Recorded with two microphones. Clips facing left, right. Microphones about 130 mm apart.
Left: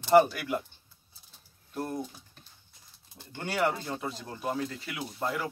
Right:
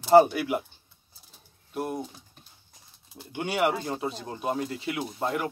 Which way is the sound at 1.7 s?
10° right (ahead or behind).